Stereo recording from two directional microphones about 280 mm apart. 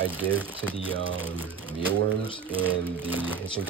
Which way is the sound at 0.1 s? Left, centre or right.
Centre.